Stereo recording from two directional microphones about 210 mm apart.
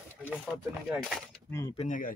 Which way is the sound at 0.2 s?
5° left (ahead or behind).